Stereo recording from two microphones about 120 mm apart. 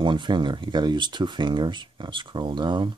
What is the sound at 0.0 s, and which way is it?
Speech, 40° right (ahead or behind).